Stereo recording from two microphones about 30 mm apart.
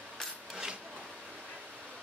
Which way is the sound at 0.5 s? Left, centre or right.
Right.